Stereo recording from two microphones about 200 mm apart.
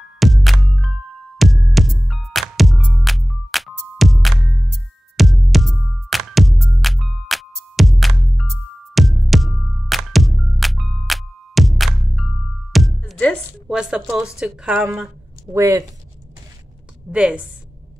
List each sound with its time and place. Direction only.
0.2 s music: centre (ahead or behind)
14.4 s a woman's voice: 5° right (ahead or behind)
17.1 s a woman's voice: 5° right (ahead or behind)